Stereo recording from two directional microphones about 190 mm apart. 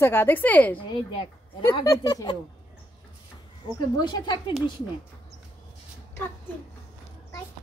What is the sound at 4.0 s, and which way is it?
Speech, 25° left (ahead or behind).